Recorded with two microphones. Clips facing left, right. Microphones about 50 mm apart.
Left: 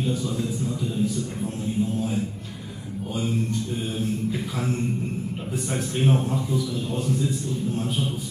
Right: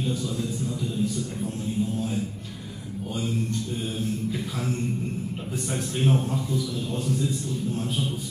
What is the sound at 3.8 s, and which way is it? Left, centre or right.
Speech, centre.